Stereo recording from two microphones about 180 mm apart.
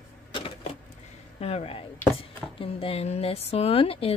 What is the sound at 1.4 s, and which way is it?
Speech, 35° left (ahead or behind).